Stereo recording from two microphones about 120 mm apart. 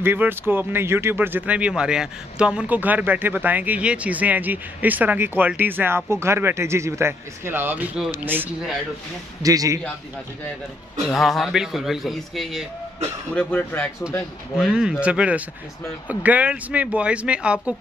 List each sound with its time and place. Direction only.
0.0 s speech: 20° right (ahead or behind)
9.4 s a man's voice: 30° right (ahead or behind)
11.1 s speech: centre (ahead or behind)
13.3 s speech: 10° left (ahead or behind)
14.6 s speech: 5° right (ahead or behind)